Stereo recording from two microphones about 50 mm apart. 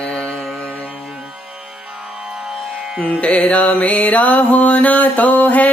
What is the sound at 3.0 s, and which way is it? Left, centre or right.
Music, left.